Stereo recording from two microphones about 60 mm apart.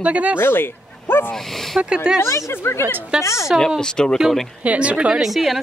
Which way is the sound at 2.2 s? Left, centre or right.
Left.